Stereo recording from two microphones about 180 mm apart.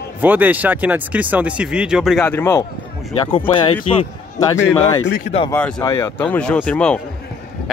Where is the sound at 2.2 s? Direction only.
15° left (ahead or behind).